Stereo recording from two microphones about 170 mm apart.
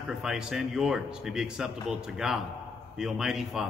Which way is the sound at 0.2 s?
5° right (ahead or behind).